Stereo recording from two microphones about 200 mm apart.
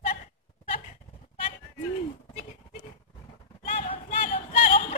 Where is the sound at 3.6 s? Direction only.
35° left (ahead or behind).